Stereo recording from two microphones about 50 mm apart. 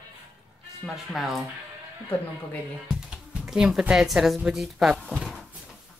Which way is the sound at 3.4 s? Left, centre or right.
Centre.